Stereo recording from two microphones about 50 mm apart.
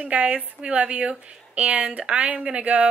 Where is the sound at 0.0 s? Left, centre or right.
Right.